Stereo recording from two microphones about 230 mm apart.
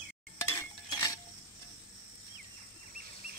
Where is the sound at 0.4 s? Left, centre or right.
Centre.